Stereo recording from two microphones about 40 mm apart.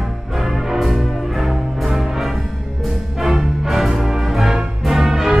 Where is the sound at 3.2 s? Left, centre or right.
Centre.